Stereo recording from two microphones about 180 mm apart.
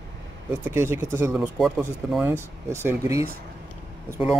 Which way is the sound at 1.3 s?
5° right (ahead or behind).